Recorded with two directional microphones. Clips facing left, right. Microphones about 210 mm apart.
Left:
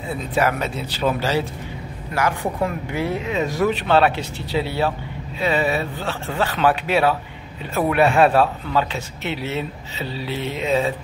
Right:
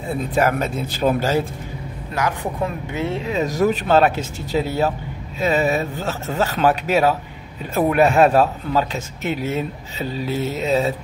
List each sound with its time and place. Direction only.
0.4 s speech: 45° right (ahead or behind)
2.1 s speech: 20° right (ahead or behind); by 11.0 s 40° right (ahead or behind)